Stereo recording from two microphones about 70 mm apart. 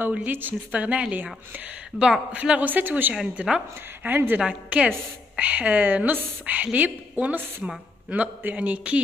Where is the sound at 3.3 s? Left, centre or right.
Centre.